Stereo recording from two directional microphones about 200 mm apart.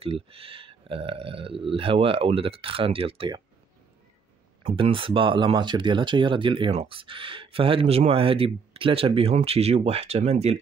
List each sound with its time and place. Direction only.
0.0 s speech: 30° right (ahead or behind)
4.6 s speech: 30° right (ahead or behind)